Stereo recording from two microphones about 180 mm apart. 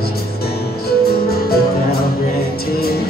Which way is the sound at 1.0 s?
60° left (ahead or behind).